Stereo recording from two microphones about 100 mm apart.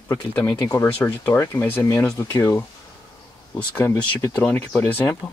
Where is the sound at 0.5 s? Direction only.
35° left (ahead or behind).